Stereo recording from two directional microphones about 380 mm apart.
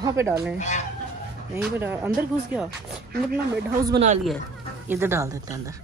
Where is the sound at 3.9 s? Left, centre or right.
Centre.